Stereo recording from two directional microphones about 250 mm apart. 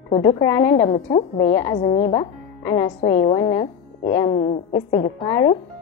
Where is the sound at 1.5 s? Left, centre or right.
Centre.